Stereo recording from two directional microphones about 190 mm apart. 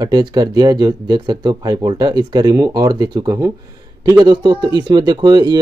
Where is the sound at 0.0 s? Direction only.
20° right (ahead or behind).